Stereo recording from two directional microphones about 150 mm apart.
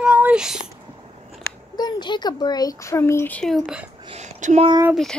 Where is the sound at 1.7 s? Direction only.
30° left (ahead or behind); by 3.8 s 5° left (ahead or behind).